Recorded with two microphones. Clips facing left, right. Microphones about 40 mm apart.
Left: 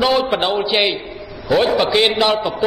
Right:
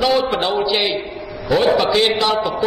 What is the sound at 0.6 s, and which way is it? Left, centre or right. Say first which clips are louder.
Speech: left 1 dB; left.